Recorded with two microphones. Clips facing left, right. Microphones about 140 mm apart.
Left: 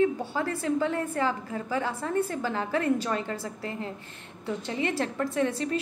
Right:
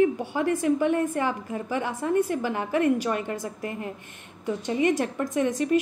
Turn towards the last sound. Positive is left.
turn(degrees=-15)  # may be behind; listen again after turning